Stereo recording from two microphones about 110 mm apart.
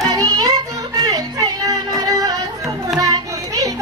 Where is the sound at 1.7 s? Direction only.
35° right (ahead or behind).